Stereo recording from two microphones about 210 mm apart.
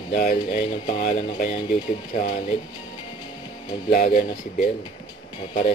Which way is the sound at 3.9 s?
40° left (ahead or behind).